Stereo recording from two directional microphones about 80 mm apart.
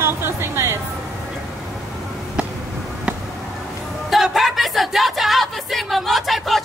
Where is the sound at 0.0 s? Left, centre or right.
Right.